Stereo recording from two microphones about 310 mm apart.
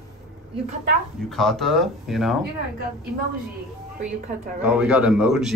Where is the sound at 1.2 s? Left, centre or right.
Centre.